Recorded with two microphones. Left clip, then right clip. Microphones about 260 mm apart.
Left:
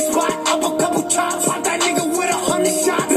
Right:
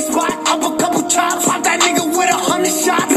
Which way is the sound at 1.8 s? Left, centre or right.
Right.